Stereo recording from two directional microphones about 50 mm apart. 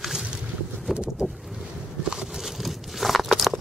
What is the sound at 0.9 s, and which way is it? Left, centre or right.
Boat, centre.